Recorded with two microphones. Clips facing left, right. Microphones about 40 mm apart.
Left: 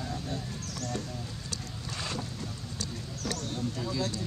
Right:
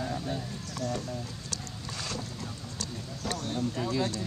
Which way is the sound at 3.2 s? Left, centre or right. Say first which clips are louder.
Right 2 dB; centre.